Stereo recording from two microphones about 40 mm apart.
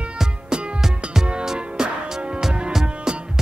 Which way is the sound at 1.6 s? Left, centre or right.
Right.